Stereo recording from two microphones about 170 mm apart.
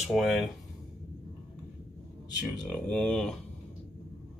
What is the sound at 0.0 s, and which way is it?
Speech, centre (ahead or behind).